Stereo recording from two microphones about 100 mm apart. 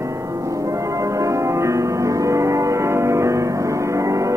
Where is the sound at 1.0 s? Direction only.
30° right (ahead or behind).